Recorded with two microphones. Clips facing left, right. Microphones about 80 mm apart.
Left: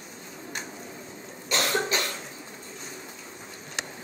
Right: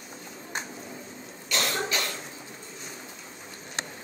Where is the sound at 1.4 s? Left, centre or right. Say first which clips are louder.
Left 3 dB; left.